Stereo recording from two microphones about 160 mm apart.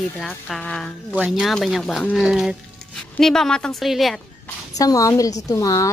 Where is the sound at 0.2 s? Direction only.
5° left (ahead or behind).